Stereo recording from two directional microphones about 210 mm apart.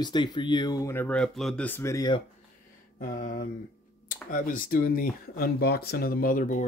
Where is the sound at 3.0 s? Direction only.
40° left (ahead or behind).